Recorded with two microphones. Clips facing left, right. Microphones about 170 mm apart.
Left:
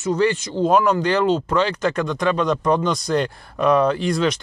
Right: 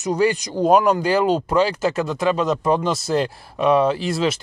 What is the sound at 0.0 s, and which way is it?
Speech, 10° right (ahead or behind).